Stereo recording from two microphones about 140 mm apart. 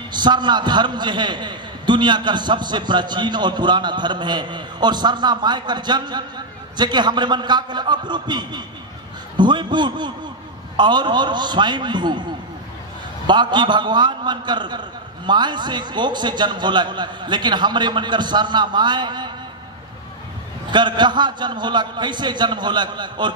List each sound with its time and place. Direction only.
0.1 s a man's voice: 30° right (ahead or behind)
13.3 s a man's voice: 30° right (ahead or behind)
20.7 s a man's voice: 35° right (ahead or behind)